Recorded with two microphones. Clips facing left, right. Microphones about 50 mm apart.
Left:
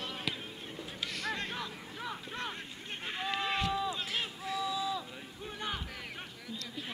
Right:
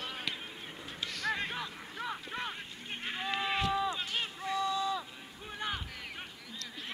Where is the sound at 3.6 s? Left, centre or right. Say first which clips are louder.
Right 2 dB; centre.